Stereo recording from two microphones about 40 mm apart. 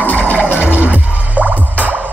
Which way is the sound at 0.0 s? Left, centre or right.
Left.